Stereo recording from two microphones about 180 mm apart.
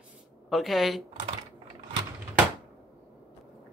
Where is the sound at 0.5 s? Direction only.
Centre (ahead or behind).